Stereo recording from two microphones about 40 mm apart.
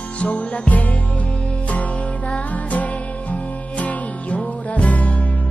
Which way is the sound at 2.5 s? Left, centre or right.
Left.